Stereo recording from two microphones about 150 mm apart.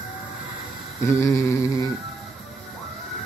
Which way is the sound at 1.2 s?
20° left (ahead or behind).